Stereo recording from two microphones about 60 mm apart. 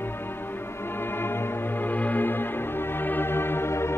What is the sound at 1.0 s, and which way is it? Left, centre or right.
Music, left.